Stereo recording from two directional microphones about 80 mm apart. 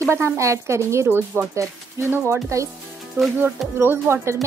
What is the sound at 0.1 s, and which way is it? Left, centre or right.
A woman's voice, right.